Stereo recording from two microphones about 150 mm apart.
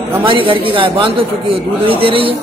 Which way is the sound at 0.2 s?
35° right (ahead or behind).